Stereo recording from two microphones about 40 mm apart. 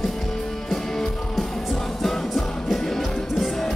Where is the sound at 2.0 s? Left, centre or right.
Centre.